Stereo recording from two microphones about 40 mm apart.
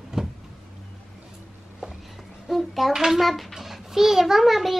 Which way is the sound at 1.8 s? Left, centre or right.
Centre.